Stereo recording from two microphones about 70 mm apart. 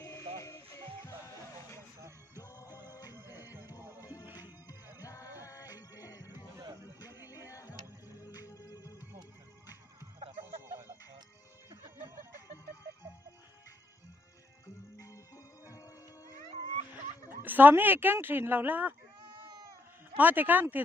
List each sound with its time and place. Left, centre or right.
0.0 s music: left
2.3 s music: left
3.2 s music: right
4.0 s music: left
7.4 s a sound: left
8.3 s music: left
9.7 s music: right
15.7 s music: left
17.3 s speech: right
20.2 s speech: right